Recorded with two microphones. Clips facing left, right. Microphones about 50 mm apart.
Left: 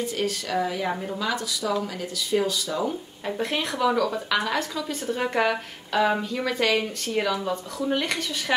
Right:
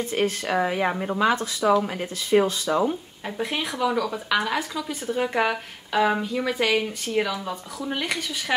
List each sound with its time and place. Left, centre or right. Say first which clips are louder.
0.0 s speech: right 3 dB; right
3.3 s speech: left 1 dB; centre